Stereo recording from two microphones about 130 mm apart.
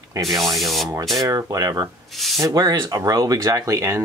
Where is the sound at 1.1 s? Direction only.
25° right (ahead or behind).